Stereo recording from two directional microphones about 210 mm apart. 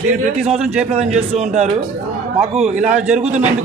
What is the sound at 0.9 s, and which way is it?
A man's voice, 30° right (ahead or behind).